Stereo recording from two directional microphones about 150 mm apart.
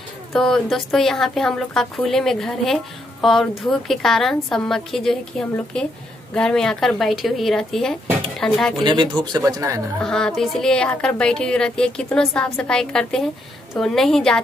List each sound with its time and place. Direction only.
0.3 s a woman's voice: centre (ahead or behind)
8.8 s speech: 30° right (ahead or behind)
9.9 s a woman's voice: 5° left (ahead or behind)